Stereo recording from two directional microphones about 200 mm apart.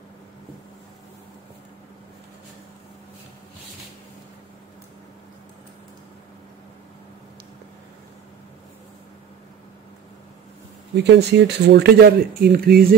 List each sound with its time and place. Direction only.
11.0 s speech: 55° right (ahead or behind)